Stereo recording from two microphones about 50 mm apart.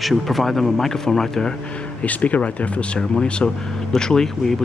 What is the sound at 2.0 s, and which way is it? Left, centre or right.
Speech, left.